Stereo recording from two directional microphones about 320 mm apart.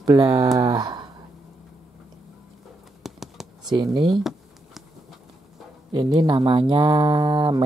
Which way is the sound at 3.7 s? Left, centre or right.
Centre.